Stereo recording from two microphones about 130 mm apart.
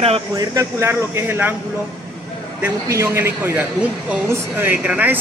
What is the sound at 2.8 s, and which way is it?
Speech, 20° right (ahead or behind).